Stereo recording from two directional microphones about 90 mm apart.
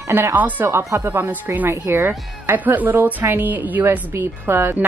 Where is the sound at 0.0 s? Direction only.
30° right (ahead or behind).